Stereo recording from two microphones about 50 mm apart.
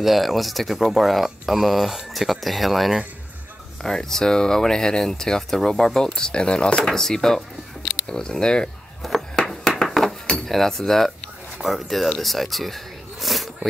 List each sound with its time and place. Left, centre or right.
0.0 s speech: centre
3.8 s speech: centre
9.3 s a sound: centre
10.3 s speech: centre